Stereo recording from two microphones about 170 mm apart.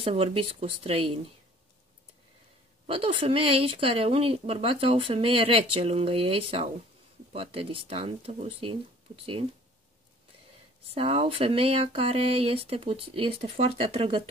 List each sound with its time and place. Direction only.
0.0 s a woman's voice: 35° right (ahead or behind)
2.9 s a woman's voice: 35° right (ahead or behind)
10.9 s a woman's voice: 35° right (ahead or behind)